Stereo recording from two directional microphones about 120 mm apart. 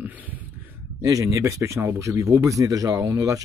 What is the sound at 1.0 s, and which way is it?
Speech, 25° right (ahead or behind).